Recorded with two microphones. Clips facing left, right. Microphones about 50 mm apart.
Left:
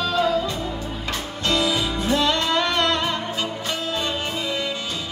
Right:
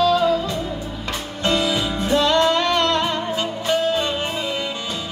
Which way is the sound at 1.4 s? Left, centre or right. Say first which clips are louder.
Right 2 dB; right.